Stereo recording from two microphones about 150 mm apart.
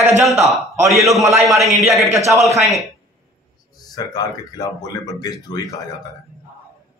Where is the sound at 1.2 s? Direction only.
20° right (ahead or behind).